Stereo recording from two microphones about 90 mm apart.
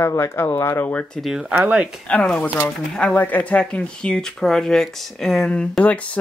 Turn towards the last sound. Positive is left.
turn(degrees=15)  # may be behind; listen again after turning